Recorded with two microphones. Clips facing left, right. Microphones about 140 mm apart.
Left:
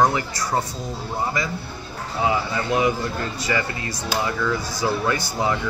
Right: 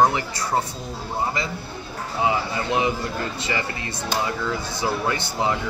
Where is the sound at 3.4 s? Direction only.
25° right (ahead or behind).